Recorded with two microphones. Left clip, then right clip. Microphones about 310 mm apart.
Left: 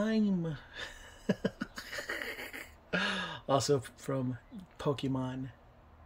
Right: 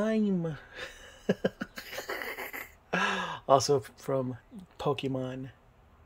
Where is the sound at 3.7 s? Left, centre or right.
Centre.